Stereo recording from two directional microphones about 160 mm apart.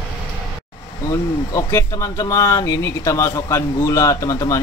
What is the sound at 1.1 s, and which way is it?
Speech, 20° left (ahead or behind).